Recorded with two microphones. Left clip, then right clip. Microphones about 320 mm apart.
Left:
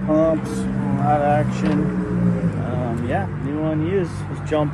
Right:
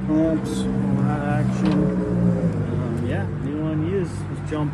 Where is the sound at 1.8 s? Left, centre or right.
Left.